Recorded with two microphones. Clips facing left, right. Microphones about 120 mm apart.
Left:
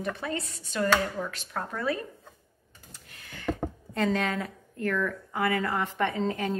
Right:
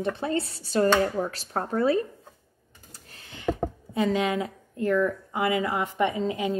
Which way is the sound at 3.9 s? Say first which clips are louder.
Right 3 dB; 10° right (ahead or behind).